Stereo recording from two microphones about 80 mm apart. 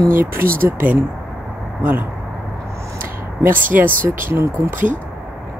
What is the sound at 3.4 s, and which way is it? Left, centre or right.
Speech, right.